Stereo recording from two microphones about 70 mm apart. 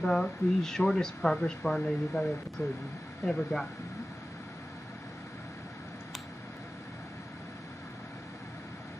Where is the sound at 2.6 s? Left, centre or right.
Left.